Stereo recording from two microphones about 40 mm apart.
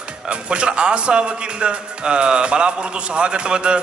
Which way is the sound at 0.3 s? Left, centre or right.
Right.